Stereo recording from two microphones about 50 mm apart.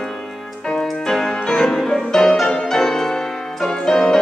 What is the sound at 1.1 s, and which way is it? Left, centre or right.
Music, centre.